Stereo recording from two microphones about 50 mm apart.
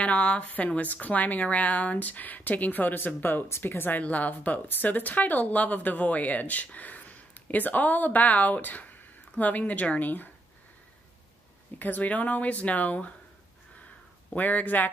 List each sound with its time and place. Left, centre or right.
0.0 s speech: left
3.4 s speech: left
4.0 s speech: left
11.8 s speech: left
14.3 s speech: left